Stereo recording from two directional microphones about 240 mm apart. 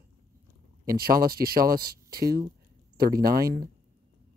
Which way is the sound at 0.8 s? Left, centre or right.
Right.